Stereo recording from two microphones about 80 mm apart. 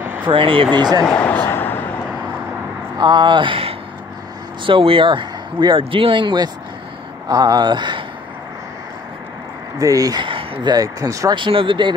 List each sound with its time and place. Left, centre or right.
0.0 s a sound: right
0.3 s speech: right
1.0 s a sound: centre
3.0 s speech: right
4.6 s speech: right
7.2 s speech: right
9.8 s speech: right
10.1 s speech: right
11.3 s speech: right